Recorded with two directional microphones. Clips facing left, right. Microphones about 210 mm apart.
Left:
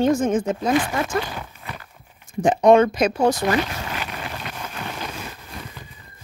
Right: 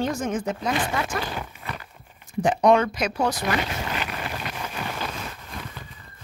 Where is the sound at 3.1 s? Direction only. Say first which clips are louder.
Left 6 dB; 50° left (ahead or behind).